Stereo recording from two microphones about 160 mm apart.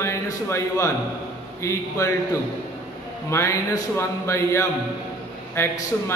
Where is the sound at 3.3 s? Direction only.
15° left (ahead or behind).